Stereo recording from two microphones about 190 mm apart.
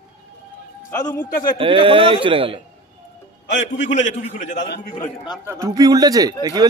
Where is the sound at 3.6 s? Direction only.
40° left (ahead or behind).